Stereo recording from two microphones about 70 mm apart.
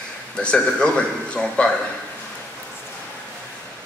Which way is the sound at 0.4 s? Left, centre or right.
Centre.